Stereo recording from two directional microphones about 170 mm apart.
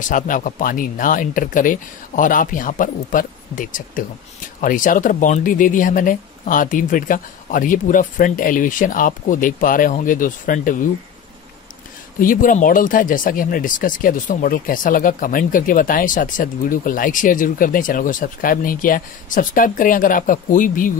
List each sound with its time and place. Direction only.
0.1 s speech: 50° left (ahead or behind)
12.2 s speech: 55° left (ahead or behind)